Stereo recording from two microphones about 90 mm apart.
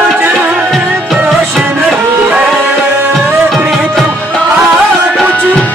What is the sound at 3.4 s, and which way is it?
Music, centre (ahead or behind).